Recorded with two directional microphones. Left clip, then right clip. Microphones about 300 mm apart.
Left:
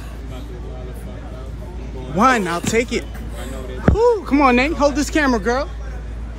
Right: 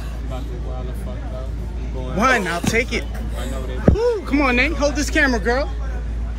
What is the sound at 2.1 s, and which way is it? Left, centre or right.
Speech, centre.